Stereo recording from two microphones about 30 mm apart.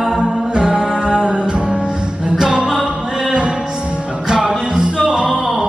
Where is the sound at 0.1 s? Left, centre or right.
Right.